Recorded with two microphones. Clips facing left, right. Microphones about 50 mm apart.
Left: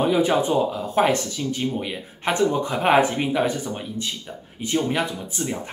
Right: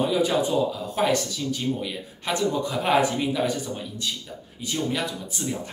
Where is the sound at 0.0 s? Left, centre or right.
Left.